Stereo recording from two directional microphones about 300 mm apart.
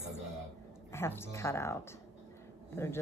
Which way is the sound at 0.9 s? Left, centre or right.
Centre.